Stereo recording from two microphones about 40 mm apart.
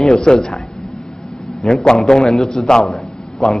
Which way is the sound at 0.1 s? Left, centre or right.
Centre.